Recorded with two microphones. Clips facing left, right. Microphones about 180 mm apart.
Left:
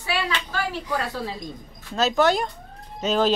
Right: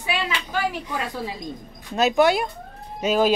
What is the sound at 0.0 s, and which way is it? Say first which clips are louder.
A woman's voice: even; 15° right (ahead or behind).